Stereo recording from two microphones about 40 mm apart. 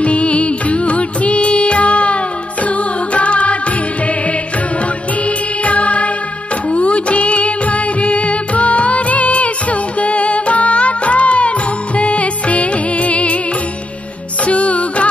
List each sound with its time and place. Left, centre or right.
0.0 s music: left
5.2 s music: left
14.4 s music: left